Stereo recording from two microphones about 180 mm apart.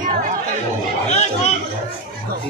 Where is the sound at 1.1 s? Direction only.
40° left (ahead or behind).